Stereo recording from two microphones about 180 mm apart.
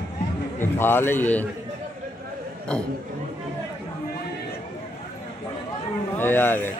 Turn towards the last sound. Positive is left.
turn(degrees=10)  # may be behind; listen again after turning